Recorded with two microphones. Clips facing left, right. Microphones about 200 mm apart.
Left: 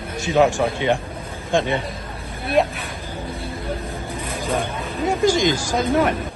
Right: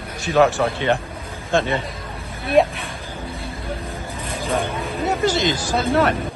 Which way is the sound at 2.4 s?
Centre (ahead or behind).